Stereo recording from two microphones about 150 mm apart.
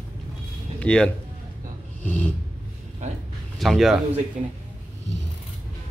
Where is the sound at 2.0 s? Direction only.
10° left (ahead or behind).